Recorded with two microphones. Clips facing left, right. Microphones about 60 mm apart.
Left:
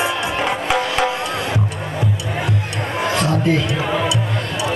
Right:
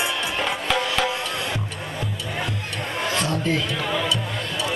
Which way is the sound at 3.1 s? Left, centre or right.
Centre.